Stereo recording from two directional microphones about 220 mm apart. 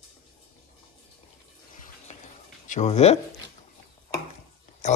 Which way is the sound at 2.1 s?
30° left (ahead or behind).